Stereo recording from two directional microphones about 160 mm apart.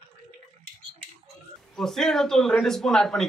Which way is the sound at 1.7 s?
5° left (ahead or behind).